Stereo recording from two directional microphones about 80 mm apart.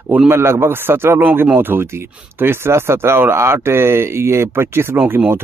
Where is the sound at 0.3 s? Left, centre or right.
Right.